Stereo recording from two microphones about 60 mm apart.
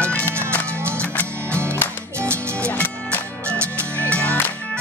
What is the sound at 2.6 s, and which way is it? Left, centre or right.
Music, left.